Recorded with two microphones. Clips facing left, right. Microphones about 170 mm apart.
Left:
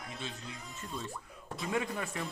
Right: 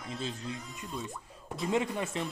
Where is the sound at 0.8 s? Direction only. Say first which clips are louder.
Right 2 dB; 15° right (ahead or behind).